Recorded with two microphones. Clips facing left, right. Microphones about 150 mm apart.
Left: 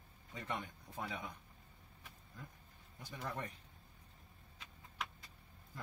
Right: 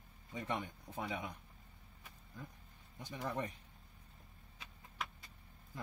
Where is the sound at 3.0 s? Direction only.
20° right (ahead or behind).